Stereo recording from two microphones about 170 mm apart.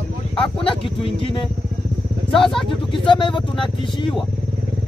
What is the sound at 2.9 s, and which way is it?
Speech, 30° left (ahead or behind).